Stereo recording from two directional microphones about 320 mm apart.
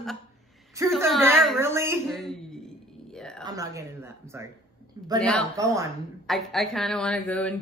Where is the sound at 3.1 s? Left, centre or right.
Centre.